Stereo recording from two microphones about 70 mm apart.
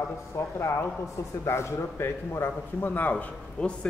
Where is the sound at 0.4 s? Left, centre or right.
Left.